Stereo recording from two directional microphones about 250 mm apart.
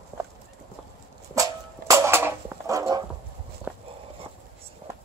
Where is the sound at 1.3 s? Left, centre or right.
Centre.